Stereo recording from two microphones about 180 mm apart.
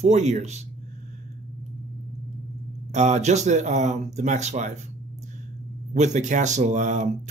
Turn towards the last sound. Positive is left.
turn(degrees=-45)  # may be behind; listen again after turning